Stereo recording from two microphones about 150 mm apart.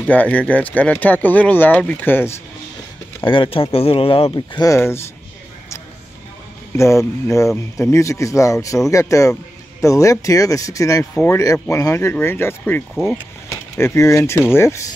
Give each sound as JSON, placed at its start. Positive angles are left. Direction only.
{"t": 0.1, "sound": "speech", "side_deg": 10}
{"t": 3.3, "sound": "speech", "side_deg": 35}
{"t": 4.6, "sound": "speech", "side_deg": 20}
{"t": 6.8, "sound": "speech", "side_deg": 20}